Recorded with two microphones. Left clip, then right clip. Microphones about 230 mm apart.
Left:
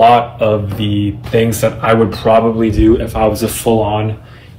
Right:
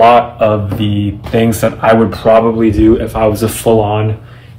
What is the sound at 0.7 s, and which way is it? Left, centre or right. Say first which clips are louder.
Speech: even; centre.